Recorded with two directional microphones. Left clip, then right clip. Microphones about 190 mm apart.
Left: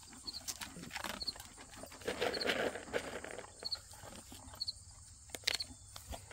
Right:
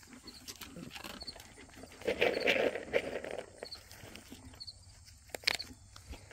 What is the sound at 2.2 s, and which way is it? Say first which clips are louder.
Vehicle: right 5 dB; 20° right (ahead or behind).